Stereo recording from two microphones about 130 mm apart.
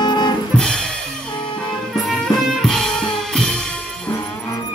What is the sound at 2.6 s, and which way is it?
Drum kit, 5° left (ahead or behind).